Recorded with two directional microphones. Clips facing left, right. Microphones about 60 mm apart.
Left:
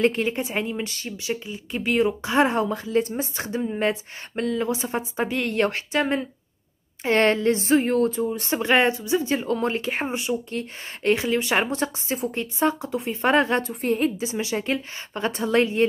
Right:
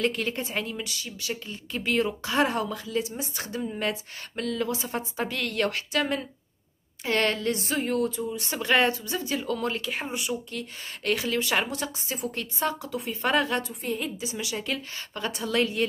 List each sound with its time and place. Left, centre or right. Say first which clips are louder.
0.0 s speech: left 6 dB; left
0.8 s speech: left 4 dB; left
1.1 s speech: left 6 dB; left
3.0 s speech: left 7 dB; left
3.3 s speech: left 5 dB; left